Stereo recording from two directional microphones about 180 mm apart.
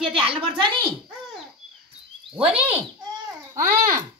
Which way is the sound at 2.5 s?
5° right (ahead or behind).